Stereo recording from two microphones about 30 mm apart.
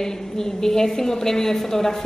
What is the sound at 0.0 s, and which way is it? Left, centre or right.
A woman's voice, centre.